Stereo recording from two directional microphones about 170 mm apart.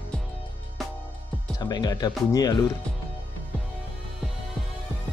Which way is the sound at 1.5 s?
25° left (ahead or behind).